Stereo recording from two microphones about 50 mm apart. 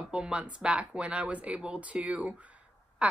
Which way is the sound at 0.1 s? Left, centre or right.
Right.